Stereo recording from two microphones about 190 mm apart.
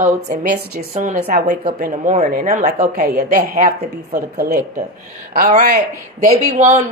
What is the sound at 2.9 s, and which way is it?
Speech, 55° right (ahead or behind).